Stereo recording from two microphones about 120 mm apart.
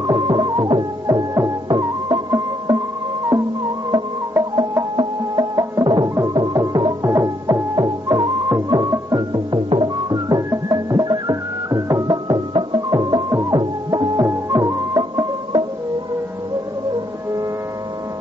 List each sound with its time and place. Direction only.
0.0 s music: 35° right (ahead or behind)
3.3 s music: 20° right (ahead or behind)
4.6 s music: 35° right (ahead or behind)